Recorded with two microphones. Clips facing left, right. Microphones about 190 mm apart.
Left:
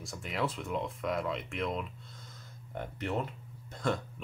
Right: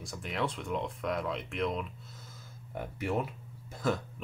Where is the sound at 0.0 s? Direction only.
Centre (ahead or behind).